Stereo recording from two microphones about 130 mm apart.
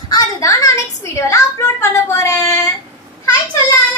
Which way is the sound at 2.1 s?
25° left (ahead or behind).